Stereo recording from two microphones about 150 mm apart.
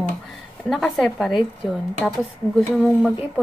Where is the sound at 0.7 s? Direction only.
Centre (ahead or behind).